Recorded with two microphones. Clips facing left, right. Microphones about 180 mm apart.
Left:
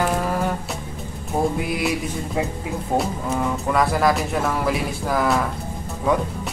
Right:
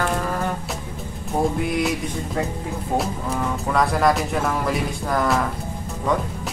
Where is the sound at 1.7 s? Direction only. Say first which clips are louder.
Right 1 dB; 5° left (ahead or behind).